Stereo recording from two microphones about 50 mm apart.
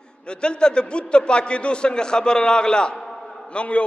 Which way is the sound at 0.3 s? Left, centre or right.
Centre.